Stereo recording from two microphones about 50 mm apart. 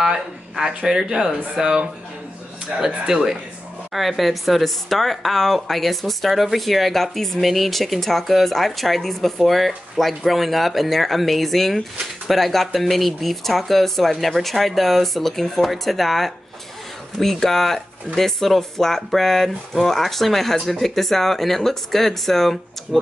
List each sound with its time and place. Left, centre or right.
0.0 s speech: centre
3.9 s speech: centre